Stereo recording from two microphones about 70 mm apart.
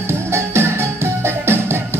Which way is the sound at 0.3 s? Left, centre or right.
Right.